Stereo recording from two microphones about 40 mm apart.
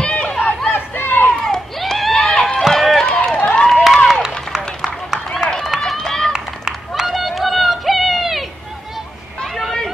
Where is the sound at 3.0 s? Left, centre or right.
Left.